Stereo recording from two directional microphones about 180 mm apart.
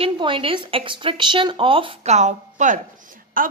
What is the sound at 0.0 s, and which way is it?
A woman's voice, 30° right (ahead or behind).